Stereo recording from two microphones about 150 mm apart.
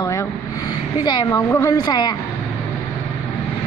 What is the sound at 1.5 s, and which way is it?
Speech, 15° left (ahead or behind).